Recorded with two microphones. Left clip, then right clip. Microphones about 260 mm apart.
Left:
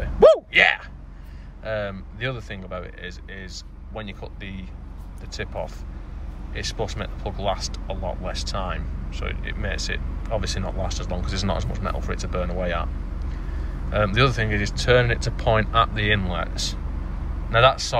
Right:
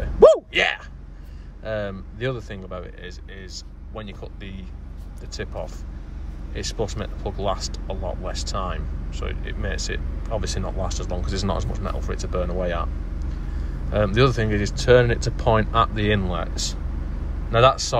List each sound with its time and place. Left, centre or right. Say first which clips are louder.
0.0 s a sound: right 1 dB; centre
1.6 s speech: even; centre
13.9 s speech: right 1 dB; centre